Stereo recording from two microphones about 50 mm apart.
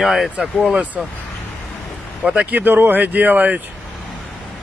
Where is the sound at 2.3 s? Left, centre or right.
Right.